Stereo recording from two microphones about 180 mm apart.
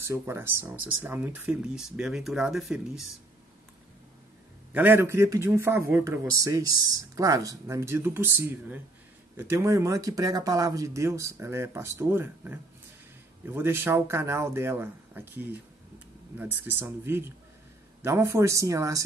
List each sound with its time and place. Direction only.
0.0 s speech: 15° right (ahead or behind)
4.7 s speech: 10° right (ahead or behind)